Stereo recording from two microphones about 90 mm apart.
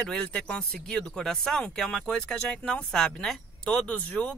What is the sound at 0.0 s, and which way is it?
Speech, 10° left (ahead or behind).